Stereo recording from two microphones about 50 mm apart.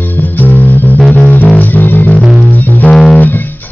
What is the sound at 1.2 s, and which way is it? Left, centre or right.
Music, left.